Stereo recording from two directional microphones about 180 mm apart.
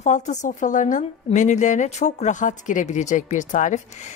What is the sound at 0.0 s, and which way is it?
A woman's voice, 40° left (ahead or behind).